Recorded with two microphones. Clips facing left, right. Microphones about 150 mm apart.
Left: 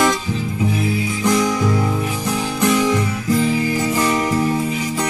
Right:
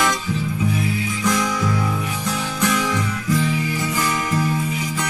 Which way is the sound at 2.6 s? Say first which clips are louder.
Left 5 dB; 25° left (ahead or behind).